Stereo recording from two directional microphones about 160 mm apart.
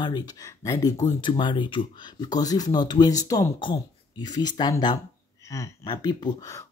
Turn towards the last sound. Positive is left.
turn(degrees=20)  # may be behind; listen again after turning